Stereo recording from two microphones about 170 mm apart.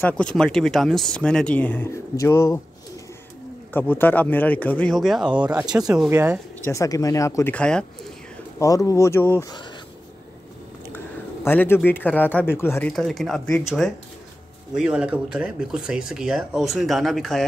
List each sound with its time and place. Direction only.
0.0 s speech: 5° left (ahead or behind)
3.7 s speech: 10° left (ahead or behind); by 6.4 s 10° right (ahead or behind)
6.6 s speech: 20° left (ahead or behind)
7.5 s speech: 5° left (ahead or behind)
8.5 s speech: 20° left (ahead or behind)
11.4 s speech: 10° left (ahead or behind)
12.9 s speech: centre (ahead or behind)
14.7 s speech: 5° right (ahead or behind)